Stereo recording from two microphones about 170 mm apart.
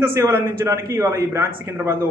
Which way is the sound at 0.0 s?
15° right (ahead or behind).